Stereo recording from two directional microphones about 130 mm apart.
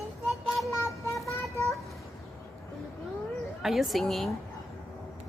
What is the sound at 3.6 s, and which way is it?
Speech, centre (ahead or behind).